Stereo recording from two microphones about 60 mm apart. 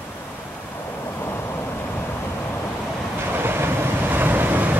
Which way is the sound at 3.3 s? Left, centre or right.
Right.